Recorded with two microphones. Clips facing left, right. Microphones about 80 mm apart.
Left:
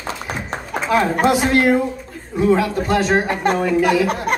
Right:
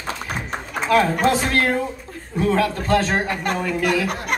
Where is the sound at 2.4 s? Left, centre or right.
Centre.